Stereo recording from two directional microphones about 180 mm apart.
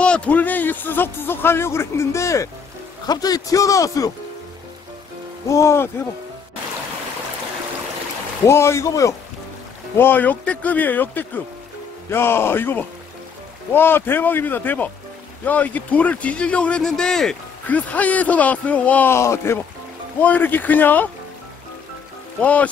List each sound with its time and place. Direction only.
0.0 s a man's voice: 5° left (ahead or behind)
5.5 s a man's voice: 15° left (ahead or behind)
8.5 s a man's voice: 15° left (ahead or behind)
22.4 s a man's voice: 10° left (ahead or behind)